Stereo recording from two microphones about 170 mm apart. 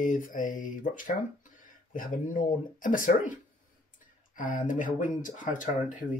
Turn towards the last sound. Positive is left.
turn(degrees=50)  # may be behind; listen again after turning